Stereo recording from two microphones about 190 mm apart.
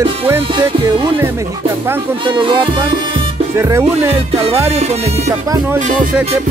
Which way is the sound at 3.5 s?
15° right (ahead or behind).